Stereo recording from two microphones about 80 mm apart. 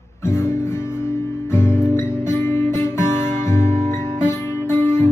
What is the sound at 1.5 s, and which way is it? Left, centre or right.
Music, left.